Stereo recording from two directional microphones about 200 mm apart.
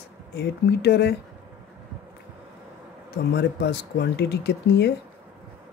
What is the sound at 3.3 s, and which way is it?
Speech, 55° left (ahead or behind).